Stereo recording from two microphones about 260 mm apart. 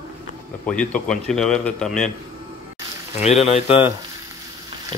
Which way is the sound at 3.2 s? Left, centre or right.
Left.